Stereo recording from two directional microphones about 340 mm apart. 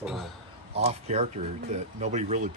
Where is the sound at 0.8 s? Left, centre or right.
Centre.